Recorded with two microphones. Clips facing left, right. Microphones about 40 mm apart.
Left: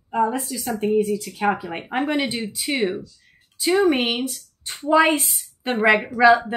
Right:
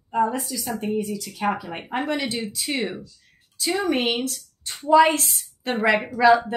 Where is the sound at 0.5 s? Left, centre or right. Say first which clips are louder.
Left 4 dB; centre.